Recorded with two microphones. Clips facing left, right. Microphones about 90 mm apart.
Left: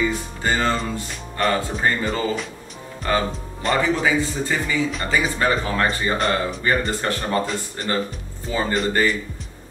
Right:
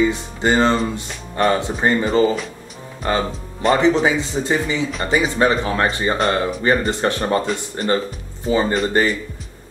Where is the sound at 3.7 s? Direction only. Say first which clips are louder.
Right 3 dB; 25° right (ahead or behind).